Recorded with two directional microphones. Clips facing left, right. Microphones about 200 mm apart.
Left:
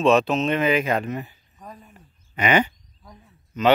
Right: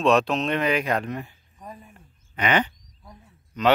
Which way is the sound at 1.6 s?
10° right (ahead or behind).